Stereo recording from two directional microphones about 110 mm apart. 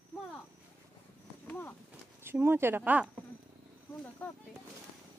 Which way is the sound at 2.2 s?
20° right (ahead or behind).